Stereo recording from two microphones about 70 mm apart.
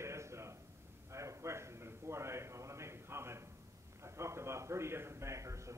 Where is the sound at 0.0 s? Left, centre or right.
Right.